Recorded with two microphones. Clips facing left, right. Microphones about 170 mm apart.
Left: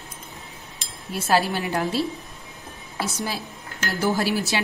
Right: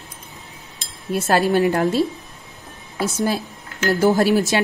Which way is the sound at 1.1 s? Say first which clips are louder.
Right 5 dB; 50° right (ahead or behind).